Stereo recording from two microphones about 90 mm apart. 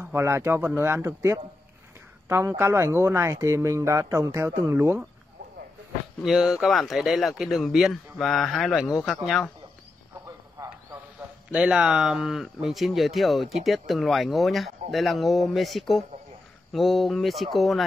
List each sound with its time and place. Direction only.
0.0 s speech: 30° right (ahead or behind)
6.2 s speech: 5° right (ahead or behind)
10.6 s a sound: 40° right (ahead or behind)
11.5 s speech: 10° right (ahead or behind)